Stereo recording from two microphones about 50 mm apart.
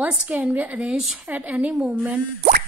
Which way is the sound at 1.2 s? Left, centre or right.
Right.